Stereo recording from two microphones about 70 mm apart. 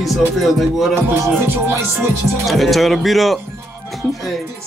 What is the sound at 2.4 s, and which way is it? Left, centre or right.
Speech, centre.